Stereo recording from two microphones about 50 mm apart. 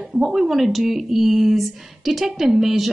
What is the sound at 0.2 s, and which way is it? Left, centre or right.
Speech, centre.